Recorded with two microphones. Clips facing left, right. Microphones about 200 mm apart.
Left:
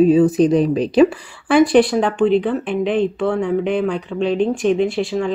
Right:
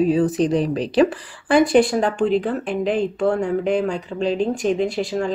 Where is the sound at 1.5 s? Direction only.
40° right (ahead or behind).